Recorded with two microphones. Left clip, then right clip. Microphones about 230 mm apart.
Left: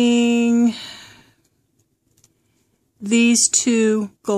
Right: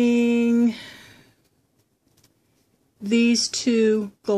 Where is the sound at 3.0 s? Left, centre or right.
Left.